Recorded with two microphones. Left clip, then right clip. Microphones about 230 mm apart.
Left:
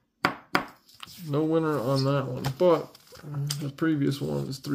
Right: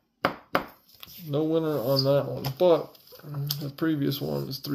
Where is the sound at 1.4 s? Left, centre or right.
Left.